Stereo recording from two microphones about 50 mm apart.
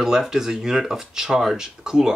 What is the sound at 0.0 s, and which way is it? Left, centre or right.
Speech, centre.